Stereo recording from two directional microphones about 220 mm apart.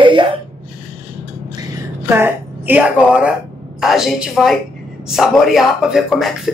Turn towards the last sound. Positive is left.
turn(degrees=0)  # may be behind; listen again after turning